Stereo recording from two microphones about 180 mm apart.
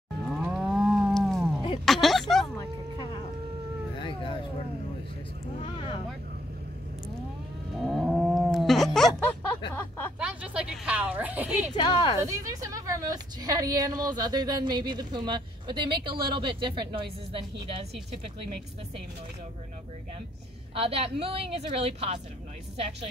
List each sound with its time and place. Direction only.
0.4 s moo: 5° right (ahead or behind)
1.9 s a sound: centre (ahead or behind)
5.6 s vehicle: 30° left (ahead or behind)
7.9 s a sound: 5° right (ahead or behind)
9.8 s speech: 10° left (ahead or behind)
10.1 s a woman's voice: 5° right (ahead or behind)
11.7 s speech: 25° left (ahead or behind)
12.2 s a woman's voice: 15° right (ahead or behind)
20.7 s a woman's voice: 30° right (ahead or behind)